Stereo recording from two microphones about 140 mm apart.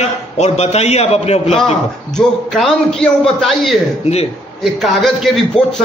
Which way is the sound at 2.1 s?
5° left (ahead or behind).